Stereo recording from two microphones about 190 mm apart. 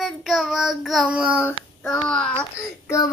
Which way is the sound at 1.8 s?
5° left (ahead or behind).